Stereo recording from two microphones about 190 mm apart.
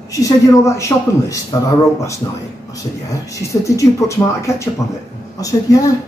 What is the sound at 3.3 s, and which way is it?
Speech, 15° left (ahead or behind).